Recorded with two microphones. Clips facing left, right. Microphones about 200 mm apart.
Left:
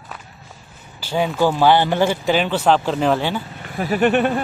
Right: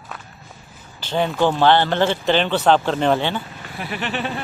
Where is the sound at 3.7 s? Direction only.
45° left (ahead or behind).